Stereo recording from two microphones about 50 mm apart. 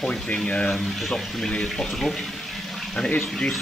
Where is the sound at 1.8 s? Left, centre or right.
Centre.